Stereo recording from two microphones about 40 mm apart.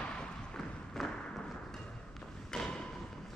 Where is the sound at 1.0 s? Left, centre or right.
Centre.